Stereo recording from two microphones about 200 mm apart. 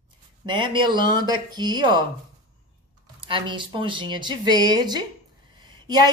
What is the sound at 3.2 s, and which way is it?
A woman's voice, 25° right (ahead or behind).